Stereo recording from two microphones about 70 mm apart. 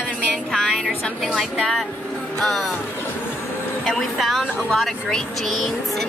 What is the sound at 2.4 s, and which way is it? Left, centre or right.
Speech, centre.